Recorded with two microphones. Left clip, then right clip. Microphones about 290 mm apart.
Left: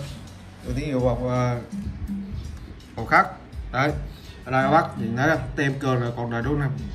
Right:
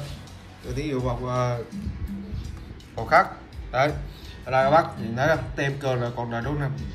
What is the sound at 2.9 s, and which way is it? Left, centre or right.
Speech, centre.